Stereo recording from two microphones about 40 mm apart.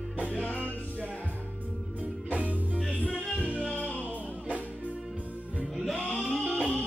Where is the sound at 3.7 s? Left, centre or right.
Left.